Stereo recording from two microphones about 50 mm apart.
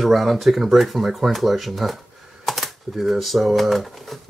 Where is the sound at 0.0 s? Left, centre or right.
Centre.